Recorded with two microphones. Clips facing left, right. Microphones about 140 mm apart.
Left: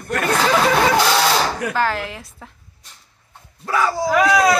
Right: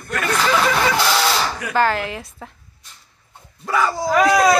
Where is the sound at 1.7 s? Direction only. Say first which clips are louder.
Right 2 dB; centre (ahead or behind).